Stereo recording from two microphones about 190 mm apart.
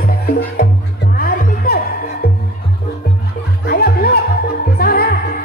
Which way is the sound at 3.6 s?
55° left (ahead or behind).